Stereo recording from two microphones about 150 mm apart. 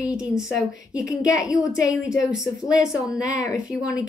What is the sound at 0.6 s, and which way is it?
A woman's voice, 20° left (ahead or behind).